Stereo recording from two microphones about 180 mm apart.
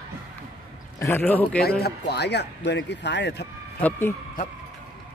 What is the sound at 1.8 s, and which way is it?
Speech, 65° left (ahead or behind).